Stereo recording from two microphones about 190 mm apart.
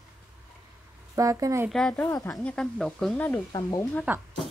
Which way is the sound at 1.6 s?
5° left (ahead or behind).